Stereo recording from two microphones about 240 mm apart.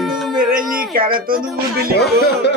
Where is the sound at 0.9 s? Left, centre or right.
Right.